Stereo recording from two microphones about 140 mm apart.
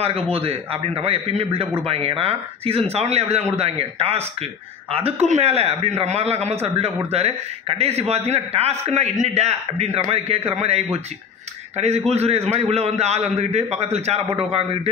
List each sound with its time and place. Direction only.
0.3 s a man's voice: 45° right (ahead or behind)